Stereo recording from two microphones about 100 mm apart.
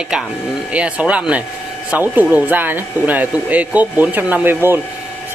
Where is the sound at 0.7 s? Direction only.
10° right (ahead or behind).